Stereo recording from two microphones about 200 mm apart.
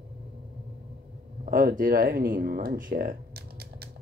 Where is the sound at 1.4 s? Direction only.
45° right (ahead or behind).